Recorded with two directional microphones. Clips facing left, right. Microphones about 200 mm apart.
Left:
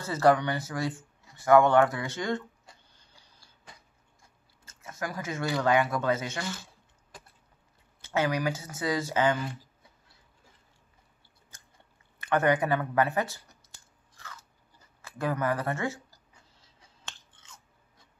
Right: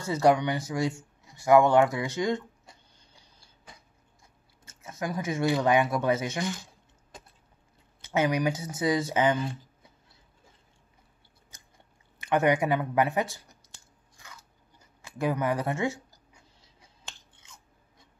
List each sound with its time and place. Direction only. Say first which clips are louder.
0.0 s speech: right 1 dB; 15° right (ahead or behind)
4.6 s speech: right 3 dB; 20° right (ahead or behind)
12.2 s speech: right 1 dB; 15° right (ahead or behind)
14.1 s biting: left 3 dB; 15° right (ahead or behind)
15.0 s speech: right 2 dB; 15° right (ahead or behind)
17.0 s a sound: even; 10° right (ahead or behind)